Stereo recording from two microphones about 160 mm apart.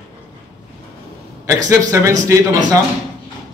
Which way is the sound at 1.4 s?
20° right (ahead or behind).